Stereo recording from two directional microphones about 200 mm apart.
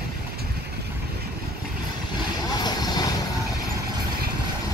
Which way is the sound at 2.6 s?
20° left (ahead or behind).